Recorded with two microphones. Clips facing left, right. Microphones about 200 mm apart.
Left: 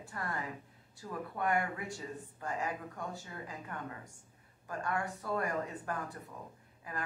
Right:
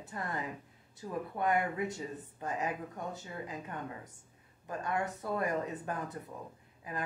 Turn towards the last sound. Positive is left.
turn(degrees=-20)  # may be behind; listen again after turning